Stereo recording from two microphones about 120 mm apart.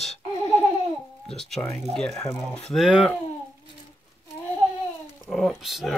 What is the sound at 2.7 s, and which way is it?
Speech, 5° right (ahead or behind).